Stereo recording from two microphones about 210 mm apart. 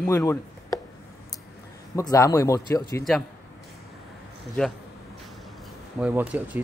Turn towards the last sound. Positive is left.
turn(degrees=-10)  # may be behind; listen again after turning